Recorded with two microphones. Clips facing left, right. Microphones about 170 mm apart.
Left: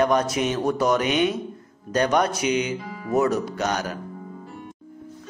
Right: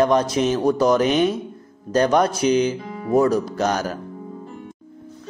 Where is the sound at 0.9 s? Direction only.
40° right (ahead or behind).